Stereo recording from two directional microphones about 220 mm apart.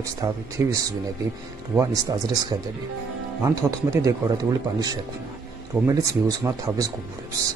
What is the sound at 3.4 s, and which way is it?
Speech, 15° right (ahead or behind).